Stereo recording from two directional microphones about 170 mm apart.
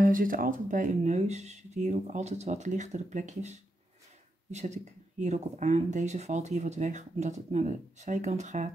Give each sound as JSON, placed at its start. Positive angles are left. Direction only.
{"t": 0.0, "sound": "speech", "side_deg": -55}